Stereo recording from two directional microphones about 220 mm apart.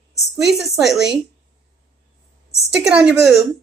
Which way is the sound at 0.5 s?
Centre (ahead or behind).